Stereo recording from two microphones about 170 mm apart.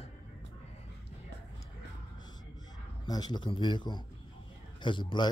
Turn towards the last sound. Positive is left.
turn(degrees=30)  # may be behind; listen again after turning